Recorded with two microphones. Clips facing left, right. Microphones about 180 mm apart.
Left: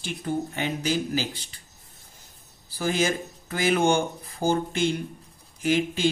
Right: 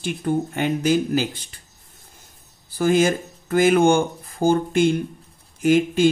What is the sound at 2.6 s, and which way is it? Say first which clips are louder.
Speech: right 7 dB; 55° right (ahead or behind).